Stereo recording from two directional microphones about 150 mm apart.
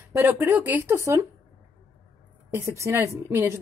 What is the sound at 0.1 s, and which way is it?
Speech, 15° right (ahead or behind).